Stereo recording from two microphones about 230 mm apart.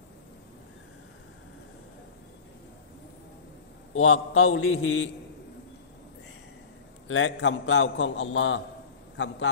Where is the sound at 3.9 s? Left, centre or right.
Left.